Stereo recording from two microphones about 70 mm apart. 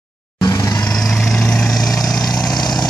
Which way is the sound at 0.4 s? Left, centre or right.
Left.